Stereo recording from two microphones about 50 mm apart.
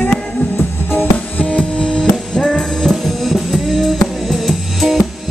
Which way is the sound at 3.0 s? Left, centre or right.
Centre.